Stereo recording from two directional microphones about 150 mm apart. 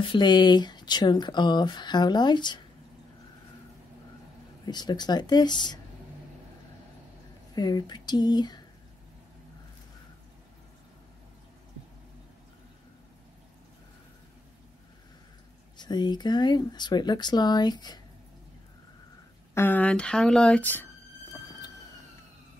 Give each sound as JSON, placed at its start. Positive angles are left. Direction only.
{"t": 0.0, "sound": "speech", "side_deg": 30}
{"t": 4.6, "sound": "speech", "side_deg": 30}
{"t": 7.5, "sound": "speech", "side_deg": 30}
{"t": 15.8, "sound": "speech", "side_deg": 30}
{"t": 19.5, "sound": "speech", "side_deg": 15}